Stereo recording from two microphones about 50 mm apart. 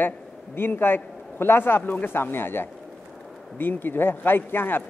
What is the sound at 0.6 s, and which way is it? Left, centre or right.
Speech, left.